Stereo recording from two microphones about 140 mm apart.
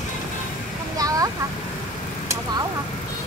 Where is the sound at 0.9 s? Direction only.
25° right (ahead or behind).